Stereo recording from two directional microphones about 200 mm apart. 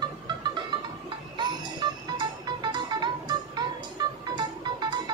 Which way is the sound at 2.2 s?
20° right (ahead or behind).